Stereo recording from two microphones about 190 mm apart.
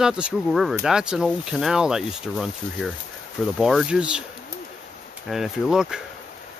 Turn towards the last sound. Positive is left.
turn(degrees=0)  # may be behind; listen again after turning